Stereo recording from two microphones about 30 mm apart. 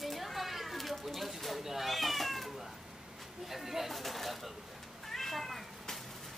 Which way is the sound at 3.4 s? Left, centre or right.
Centre.